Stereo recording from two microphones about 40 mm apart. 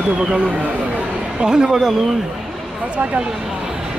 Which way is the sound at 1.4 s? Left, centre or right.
Right.